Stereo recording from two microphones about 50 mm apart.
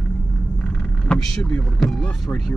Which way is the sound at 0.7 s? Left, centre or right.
Centre.